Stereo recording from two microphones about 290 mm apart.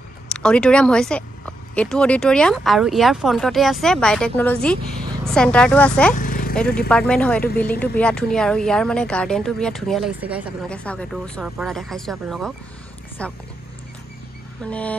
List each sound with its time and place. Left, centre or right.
0.3 s speech: centre
6.1 s vehicle: left
6.5 s speech: centre
14.6 s speech: centre